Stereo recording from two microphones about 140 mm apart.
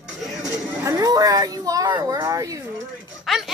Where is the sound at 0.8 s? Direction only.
25° right (ahead or behind).